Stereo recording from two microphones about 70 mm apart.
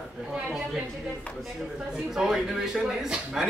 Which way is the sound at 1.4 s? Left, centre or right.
Centre.